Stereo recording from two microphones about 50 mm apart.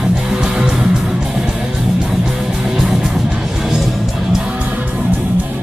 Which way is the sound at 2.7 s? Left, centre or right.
Centre.